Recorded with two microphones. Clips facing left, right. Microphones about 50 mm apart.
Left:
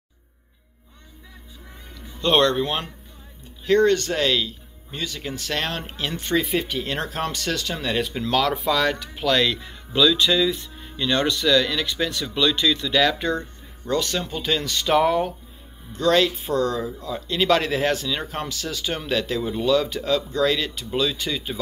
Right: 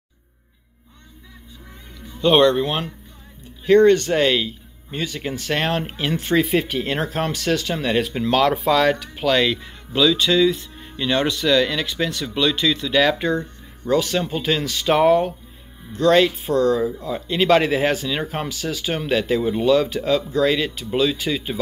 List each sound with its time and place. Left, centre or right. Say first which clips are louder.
2.1 s speech: right 4 dB; centre
3.6 s speech: right 5 dB; centre